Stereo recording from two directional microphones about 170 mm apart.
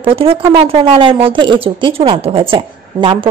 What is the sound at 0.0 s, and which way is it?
Speech, 30° right (ahead or behind).